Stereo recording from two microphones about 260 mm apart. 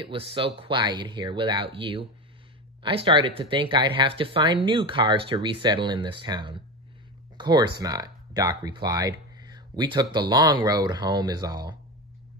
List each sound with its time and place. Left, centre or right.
0.0 s speech: right